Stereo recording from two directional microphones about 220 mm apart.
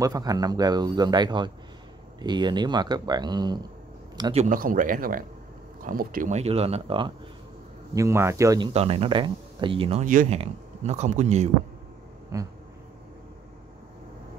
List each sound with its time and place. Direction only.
0.0 s a man's voice: 15° right (ahead or behind)
8.7 s speech: 25° right (ahead or behind)
12.3 s a man's voice: 15° right (ahead or behind)